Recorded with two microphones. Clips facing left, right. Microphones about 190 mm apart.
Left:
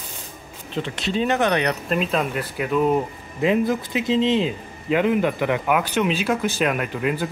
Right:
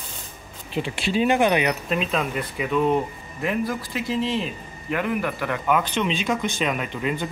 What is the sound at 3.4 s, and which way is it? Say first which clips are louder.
A man's voice: left 6 dB; 20° left (ahead or behind).